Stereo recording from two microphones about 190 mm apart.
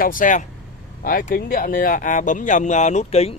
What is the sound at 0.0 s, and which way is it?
A man's voice, 45° left (ahead or behind).